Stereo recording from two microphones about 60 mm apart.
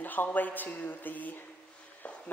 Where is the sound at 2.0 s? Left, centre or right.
Left.